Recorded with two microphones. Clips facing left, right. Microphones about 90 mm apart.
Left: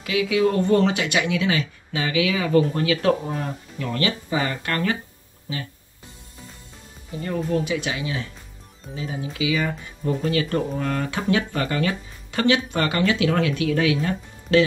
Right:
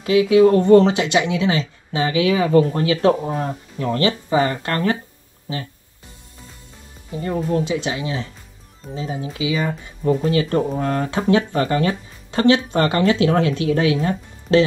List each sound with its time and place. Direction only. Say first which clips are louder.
0.0 s speech: right 8 dB; 35° right (ahead or behind)
7.1 s speech: right 3 dB; 30° right (ahead or behind)